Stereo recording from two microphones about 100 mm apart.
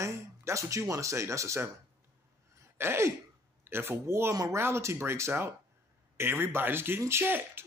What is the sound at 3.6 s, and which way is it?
Speech, 25° right (ahead or behind).